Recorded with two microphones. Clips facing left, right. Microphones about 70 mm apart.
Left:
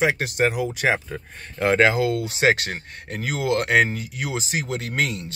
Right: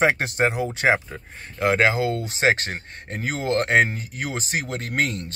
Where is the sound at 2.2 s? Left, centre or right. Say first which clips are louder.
Left 1 dB; right.